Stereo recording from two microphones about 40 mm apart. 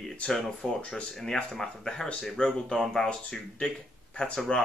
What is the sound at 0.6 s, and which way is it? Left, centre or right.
Speech, left.